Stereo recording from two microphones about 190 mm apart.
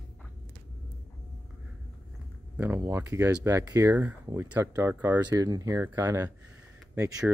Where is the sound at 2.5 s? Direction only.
10° right (ahead or behind).